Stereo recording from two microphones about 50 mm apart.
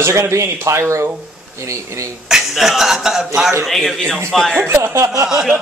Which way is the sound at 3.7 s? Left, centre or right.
Centre.